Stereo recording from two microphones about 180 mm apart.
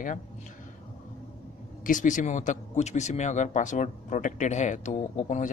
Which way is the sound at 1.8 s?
45° left (ahead or behind).